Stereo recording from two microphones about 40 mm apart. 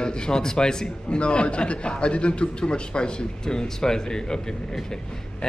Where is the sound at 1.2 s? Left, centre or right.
Left.